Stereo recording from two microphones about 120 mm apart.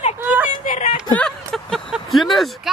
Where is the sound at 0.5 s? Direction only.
80° left.